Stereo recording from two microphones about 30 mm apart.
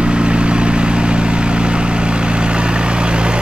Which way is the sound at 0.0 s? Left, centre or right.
Right.